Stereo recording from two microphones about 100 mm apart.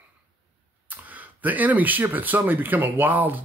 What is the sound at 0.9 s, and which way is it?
Speech, 15° right (ahead or behind).